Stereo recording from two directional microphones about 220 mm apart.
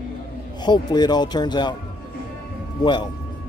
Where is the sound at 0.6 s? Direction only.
20° left (ahead or behind).